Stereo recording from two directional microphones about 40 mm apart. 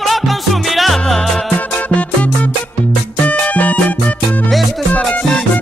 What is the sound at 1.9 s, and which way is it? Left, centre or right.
Music, left.